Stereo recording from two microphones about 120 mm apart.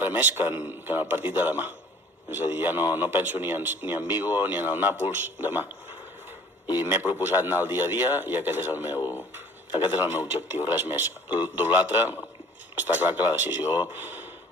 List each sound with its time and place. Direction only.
0.0 s a man's voice: 15° right (ahead or behind)
7.2 s a man's voice: 15° right (ahead or behind)